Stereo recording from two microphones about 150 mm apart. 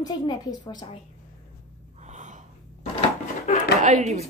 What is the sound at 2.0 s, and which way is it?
Gasp, 55° right (ahead or behind).